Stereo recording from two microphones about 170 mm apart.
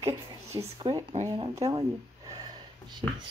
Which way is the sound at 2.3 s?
25° right (ahead or behind).